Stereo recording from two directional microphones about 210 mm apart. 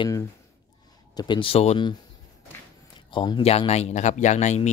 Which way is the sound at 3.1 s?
20° left (ahead or behind).